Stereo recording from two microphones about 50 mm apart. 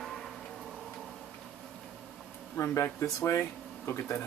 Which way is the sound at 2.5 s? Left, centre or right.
Left.